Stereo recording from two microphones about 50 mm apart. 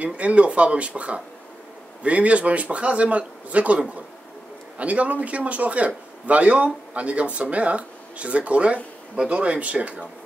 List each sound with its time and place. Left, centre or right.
0.0 s a man's voice: right